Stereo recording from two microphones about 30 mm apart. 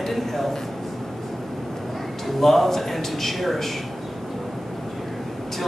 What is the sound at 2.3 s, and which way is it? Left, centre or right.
Speech, centre.